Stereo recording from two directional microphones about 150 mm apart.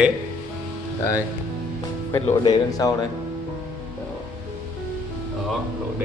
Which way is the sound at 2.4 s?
25° left (ahead or behind).